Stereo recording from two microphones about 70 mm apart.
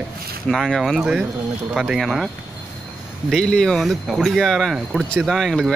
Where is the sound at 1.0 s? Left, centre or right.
Centre.